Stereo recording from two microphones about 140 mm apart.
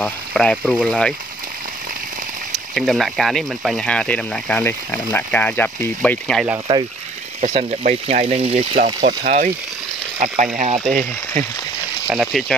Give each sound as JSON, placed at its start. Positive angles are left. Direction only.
{"t": 0.0, "sound": "speech", "side_deg": 5}
{"t": 2.7, "sound": "speech", "side_deg": 0}
{"t": 7.4, "sound": "speech", "side_deg": -50}
{"t": 8.7, "sound": "speech", "side_deg": -75}
{"t": 10.1, "sound": "speech", "side_deg": -60}
{"t": 12.1, "sound": "speech", "side_deg": 0}